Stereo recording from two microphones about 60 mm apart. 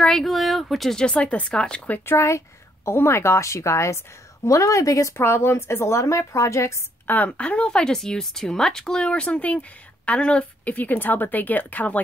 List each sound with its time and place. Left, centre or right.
0.0 s speech: centre
0.9 s speech: centre
2.0 s a woman's voice: left
5.1 s a woman's voice: left
7.1 s speech: left